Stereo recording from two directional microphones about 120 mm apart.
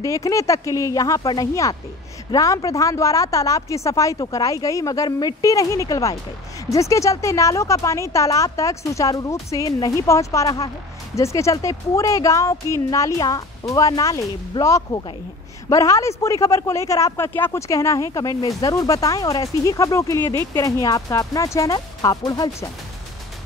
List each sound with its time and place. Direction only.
0.0 s speech: 25° left (ahead or behind)